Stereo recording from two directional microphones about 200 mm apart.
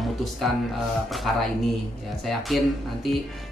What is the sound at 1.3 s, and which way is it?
Speech, centre (ahead or behind).